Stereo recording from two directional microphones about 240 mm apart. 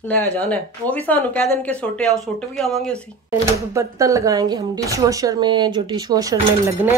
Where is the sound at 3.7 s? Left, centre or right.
Centre.